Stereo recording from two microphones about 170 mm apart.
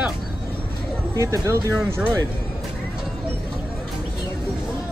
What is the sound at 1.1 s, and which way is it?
Speech, 15° right (ahead or behind).